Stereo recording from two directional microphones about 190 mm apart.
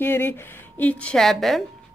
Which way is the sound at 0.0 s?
10° left (ahead or behind).